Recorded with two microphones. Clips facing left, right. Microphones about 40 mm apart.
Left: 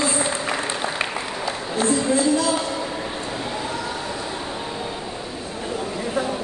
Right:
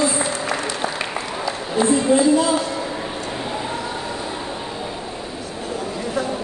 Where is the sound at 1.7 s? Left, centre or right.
Right.